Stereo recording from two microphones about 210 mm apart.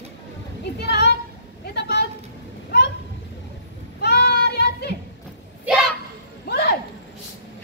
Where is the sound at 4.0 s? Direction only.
50° left (ahead or behind).